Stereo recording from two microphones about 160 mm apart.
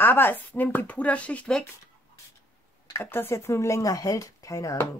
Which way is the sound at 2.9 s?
15° left (ahead or behind).